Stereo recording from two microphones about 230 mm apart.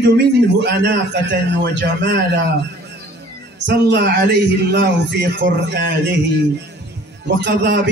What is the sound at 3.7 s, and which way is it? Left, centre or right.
A man's voice, right.